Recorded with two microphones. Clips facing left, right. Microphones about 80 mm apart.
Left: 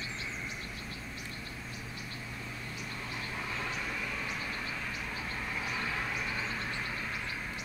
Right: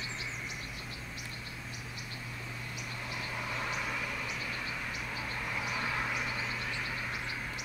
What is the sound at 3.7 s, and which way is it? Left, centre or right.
Vehicle, centre.